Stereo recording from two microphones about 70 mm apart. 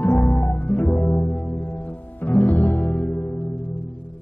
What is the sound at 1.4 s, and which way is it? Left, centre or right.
Music, left.